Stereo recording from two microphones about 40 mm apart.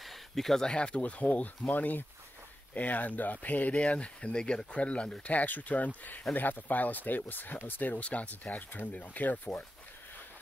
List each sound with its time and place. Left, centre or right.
0.0 s a sound: centre
0.7 s speech: left
3.8 s speech: left
5.2 s speech: left
6.3 s speech: left